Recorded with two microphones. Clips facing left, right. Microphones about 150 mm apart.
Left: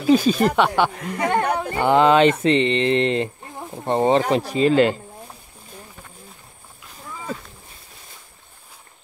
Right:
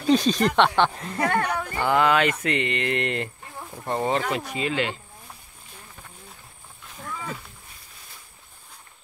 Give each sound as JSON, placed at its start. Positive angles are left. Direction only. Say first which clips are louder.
{"t": 0.0, "sound": "speech", "louder": "left 4 dB", "side_deg": 5}
{"t": 1.2, "sound": "speech", "louder": "left 4 dB", "side_deg": 20}